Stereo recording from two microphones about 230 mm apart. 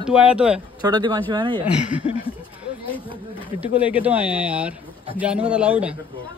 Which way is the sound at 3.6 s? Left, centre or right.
Centre.